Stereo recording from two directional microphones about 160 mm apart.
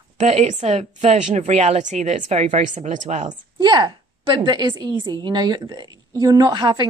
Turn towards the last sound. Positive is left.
turn(degrees=-30)  # may be behind; listen again after turning